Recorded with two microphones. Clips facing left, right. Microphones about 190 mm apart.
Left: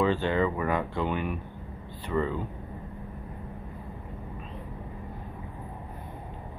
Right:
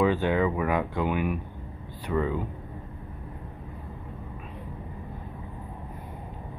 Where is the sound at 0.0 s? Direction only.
10° right (ahead or behind).